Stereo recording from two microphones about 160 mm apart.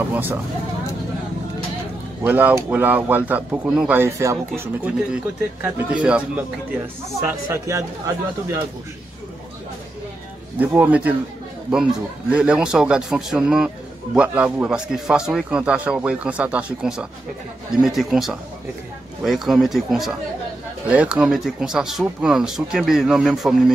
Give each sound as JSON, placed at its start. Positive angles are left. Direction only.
{"t": 0.1, "sound": "speech", "side_deg": -10}
{"t": 2.2, "sound": "speech", "side_deg": -10}
{"t": 10.6, "sound": "speech", "side_deg": -10}
{"t": 12.3, "sound": "speech", "side_deg": -5}